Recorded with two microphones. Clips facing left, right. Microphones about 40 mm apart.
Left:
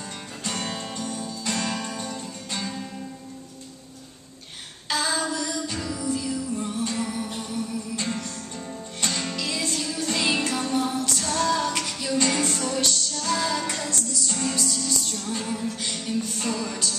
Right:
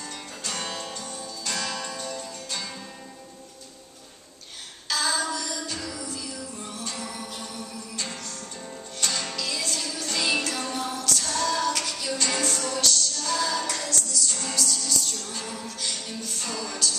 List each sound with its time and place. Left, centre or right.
0.5 s music: left
4.8 s music: left